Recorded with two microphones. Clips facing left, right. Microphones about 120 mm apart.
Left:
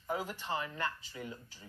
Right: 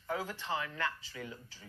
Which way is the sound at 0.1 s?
15° left (ahead or behind).